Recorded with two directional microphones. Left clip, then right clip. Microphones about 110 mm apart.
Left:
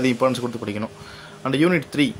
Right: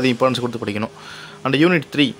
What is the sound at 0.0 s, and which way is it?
Speech, 25° right (ahead or behind).